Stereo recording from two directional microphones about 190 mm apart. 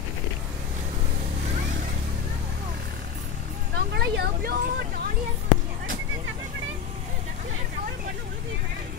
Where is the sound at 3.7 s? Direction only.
60° right (ahead or behind).